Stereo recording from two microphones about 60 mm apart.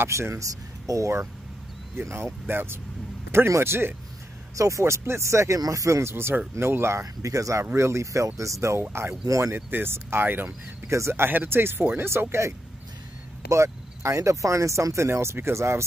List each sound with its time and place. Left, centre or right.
0.1 s speech: right
0.8 s speech: right
2.0 s speech: right
4.6 s speech: right
5.6 s speech: right
7.2 s speech: right
7.7 s speech: right
9.3 s speech: right
9.7 s speech: right
10.9 s speech: right
13.5 s speech: right